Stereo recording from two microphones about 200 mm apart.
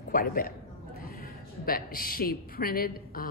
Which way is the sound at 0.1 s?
45° left (ahead or behind).